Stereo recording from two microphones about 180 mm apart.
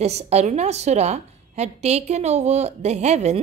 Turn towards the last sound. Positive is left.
turn(degrees=-40)  # may be behind; listen again after turning